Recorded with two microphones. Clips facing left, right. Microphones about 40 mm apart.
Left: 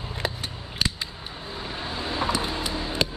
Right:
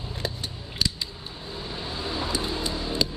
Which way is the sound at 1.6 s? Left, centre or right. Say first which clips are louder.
Left 1 dB; left.